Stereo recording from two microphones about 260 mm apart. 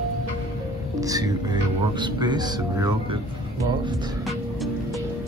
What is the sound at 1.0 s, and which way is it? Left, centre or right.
Speech, centre.